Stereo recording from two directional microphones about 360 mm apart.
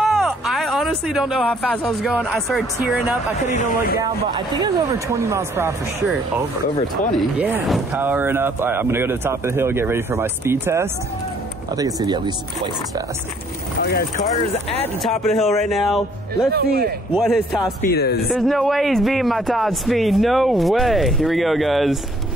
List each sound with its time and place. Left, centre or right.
0.0 s speech: centre
3.4 s speech: left
4.0 s speech: centre
7.2 s speech: centre
13.8 s speech: left
14.8 s speech: centre
16.5 s speech: right
17.1 s speech: centre
17.8 s speech: left
18.3 s speech: centre